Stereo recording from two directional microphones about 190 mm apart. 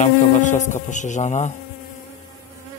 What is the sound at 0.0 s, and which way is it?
Speech, 40° left (ahead or behind).